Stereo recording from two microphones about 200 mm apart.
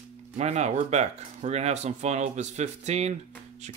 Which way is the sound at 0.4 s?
35° right (ahead or behind).